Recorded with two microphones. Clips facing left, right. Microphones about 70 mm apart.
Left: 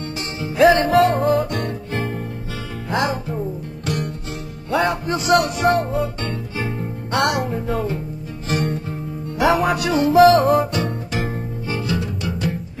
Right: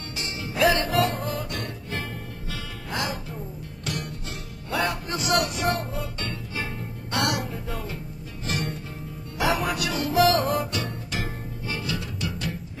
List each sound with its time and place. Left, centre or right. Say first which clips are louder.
0.4 s music: left 8 dB; left
2.0 s music: left 9 dB; left
4.6 s music: left 7 dB; left
5.7 s music: left 9 dB; left
10.1 s music: left 9 dB; left
11.7 s music: left 8 dB; left